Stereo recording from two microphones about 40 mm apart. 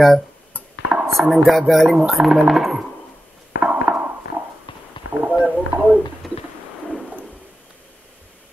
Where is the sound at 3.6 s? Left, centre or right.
Right.